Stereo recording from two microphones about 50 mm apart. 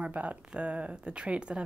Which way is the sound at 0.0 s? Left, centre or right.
Right.